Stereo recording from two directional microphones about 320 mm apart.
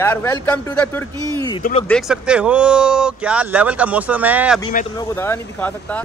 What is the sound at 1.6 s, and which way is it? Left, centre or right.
Speech, left.